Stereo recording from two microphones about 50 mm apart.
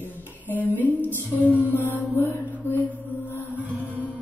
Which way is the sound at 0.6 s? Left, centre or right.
Right.